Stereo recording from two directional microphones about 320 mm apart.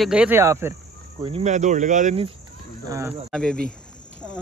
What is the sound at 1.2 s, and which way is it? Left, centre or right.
Speech, centre.